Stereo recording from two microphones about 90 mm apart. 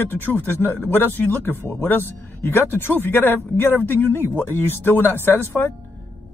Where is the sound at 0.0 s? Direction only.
20° left (ahead or behind).